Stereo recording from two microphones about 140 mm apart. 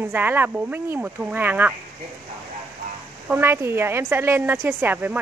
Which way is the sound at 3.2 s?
15° right (ahead or behind).